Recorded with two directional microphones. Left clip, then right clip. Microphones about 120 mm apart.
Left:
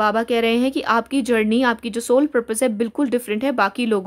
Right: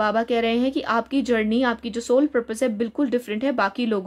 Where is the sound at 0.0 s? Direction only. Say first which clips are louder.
Left 3 dB; 35° left (ahead or behind).